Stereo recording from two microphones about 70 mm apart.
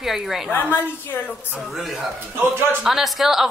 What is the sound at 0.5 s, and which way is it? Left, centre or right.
Speech, left.